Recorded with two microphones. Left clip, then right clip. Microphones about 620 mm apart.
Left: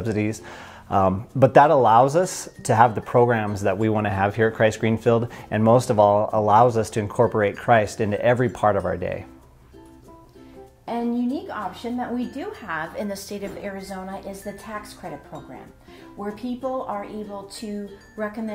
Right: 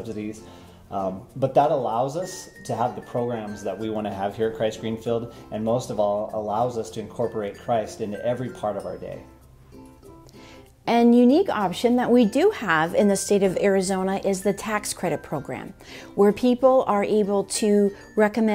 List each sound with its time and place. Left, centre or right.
0.1 s speech: left
10.9 s speech: right
16.2 s speech: right